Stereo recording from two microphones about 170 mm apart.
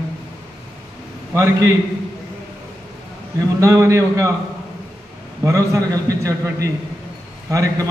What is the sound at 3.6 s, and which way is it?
Speech, 15° right (ahead or behind).